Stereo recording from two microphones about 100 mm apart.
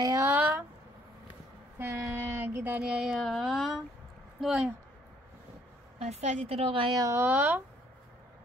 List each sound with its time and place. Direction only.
0.1 s a sound: 20° right (ahead or behind)
1.8 s child singing: 20° right (ahead or behind)
2.9 s music: 5° right (ahead or behind)
5.9 s a woman's voice: 90° right; by 7.0 s 60° right (ahead or behind)
7.0 s speech: 30° right (ahead or behind)
7.2 s speech: 15° right (ahead or behind)